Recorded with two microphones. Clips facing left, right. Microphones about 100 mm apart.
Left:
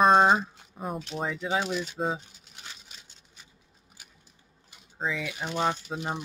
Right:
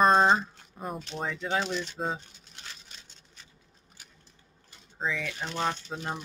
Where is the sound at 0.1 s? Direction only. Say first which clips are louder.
Left 2 dB; 5° left (ahead or behind).